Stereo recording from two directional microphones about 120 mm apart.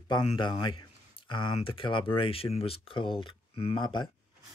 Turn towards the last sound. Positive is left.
turn(degrees=40)  # may be behind; listen again after turning